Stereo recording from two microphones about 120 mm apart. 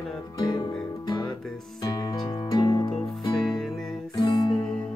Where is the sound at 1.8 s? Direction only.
35° left (ahead or behind).